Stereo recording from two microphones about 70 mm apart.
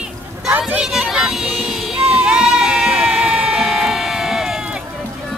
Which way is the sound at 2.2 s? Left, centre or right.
Centre.